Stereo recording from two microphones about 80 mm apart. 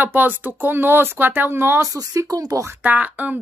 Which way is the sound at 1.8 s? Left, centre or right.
Right.